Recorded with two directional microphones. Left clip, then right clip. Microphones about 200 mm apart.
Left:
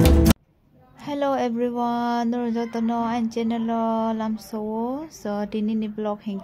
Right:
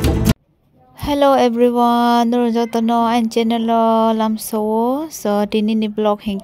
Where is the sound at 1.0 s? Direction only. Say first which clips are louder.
Right 11 dB; 40° right (ahead or behind).